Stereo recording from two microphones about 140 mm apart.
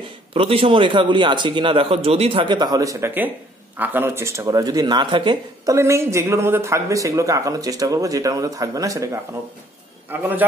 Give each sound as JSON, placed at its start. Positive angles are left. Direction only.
{"t": 0.3, "sound": "a man's voice", "side_deg": -40}
{"t": 3.7, "sound": "speech", "side_deg": -15}
{"t": 5.7, "sound": "a man's voice", "side_deg": -20}